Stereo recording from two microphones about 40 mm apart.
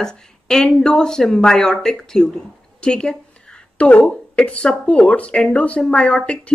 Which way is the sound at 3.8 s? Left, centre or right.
Left.